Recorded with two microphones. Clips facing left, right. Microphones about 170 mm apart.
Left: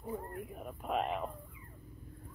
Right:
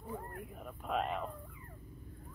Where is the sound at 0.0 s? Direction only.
5° left (ahead or behind).